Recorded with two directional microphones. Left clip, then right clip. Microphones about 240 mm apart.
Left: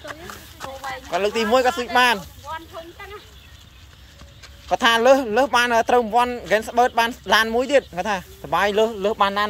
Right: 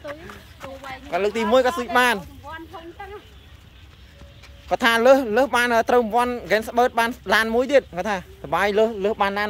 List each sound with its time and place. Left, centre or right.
0.0 s speech: left
1.1 s speech: centre
4.6 s speech: centre